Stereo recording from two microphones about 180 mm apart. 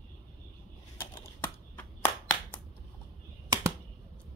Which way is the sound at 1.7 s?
10° left (ahead or behind).